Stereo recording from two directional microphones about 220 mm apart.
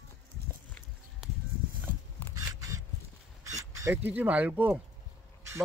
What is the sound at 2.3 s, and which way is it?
Scissors, 15° right (ahead or behind).